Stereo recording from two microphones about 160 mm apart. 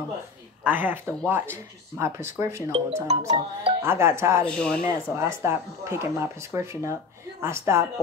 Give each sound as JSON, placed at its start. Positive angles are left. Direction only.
{"t": 0.7, "sound": "speech", "side_deg": -10}
{"t": 2.7, "sound": "speech", "side_deg": -40}
{"t": 3.3, "sound": "music", "side_deg": -35}
{"t": 3.8, "sound": "speech", "side_deg": -15}
{"t": 4.5, "sound": "speech", "side_deg": 5}
{"t": 4.8, "sound": "speech", "side_deg": -15}